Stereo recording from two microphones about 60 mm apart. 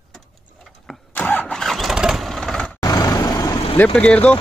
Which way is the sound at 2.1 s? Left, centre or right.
Centre.